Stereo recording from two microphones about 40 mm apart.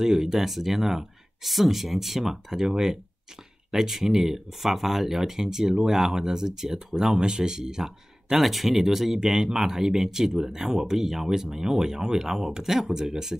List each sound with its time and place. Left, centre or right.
0.0 s speech: centre